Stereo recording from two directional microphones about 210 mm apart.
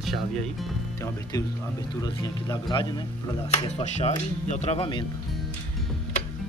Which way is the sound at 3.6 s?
30° left (ahead or behind).